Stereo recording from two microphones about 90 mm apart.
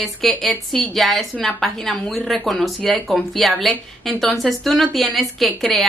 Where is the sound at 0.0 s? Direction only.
Centre (ahead or behind).